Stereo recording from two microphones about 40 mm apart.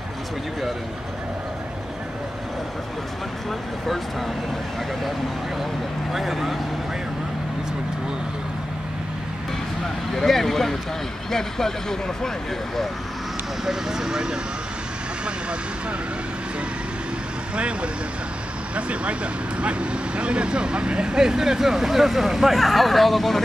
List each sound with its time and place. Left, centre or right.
6.1 s speech: centre
10.1 s speech: centre
13.7 s speech: centre
18.8 s speech: right; by 23.4 s centre